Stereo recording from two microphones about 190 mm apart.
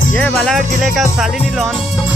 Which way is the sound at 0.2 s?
5° left (ahead or behind).